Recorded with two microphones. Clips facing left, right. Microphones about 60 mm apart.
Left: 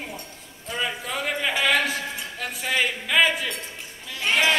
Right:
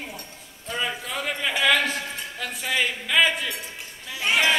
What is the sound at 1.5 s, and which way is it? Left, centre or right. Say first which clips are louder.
Speech: right 1 dB; left.